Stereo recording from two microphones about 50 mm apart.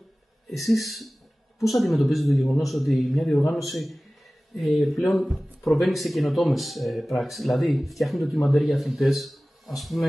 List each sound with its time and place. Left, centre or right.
0.5 s speech: centre